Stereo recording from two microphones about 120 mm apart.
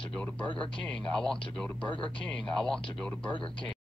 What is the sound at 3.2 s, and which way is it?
Speech, 45° left (ahead or behind).